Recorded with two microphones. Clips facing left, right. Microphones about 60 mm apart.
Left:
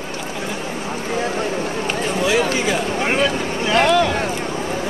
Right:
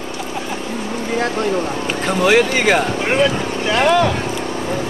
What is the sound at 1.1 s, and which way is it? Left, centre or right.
Speech, right.